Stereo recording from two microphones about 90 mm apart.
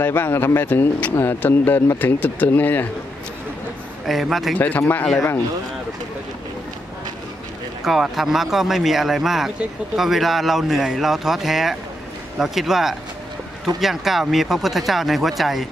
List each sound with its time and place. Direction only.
0.0 s speech: 25° left (ahead or behind)
4.1 s speech: centre (ahead or behind)
4.6 s speech: 20° left (ahead or behind)
7.8 s speech: 5° right (ahead or behind)